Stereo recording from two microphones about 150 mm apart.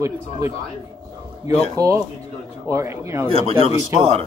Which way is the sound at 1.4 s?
20° right (ahead or behind).